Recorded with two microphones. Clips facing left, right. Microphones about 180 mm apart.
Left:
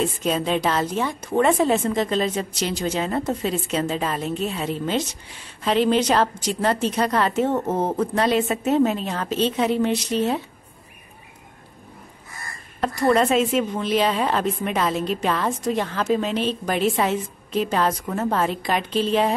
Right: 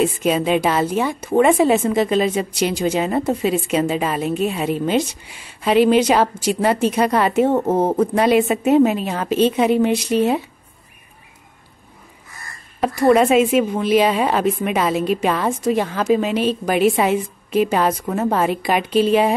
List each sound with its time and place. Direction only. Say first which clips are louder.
0.0 s speech: right 5 dB; 10° right (ahead or behind)
7.5 s speech: right 5 dB; 30° right (ahead or behind)
8.0 s speech: right 4 dB; 10° right (ahead or behind)
13.1 s speech: right 5 dB; 10° right (ahead or behind)